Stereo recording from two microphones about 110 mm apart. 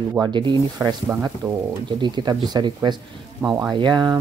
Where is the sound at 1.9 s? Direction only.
45° right (ahead or behind).